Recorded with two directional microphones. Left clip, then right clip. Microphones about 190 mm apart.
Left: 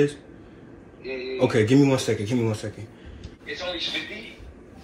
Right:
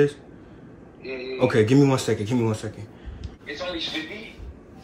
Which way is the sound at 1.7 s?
30° right (ahead or behind).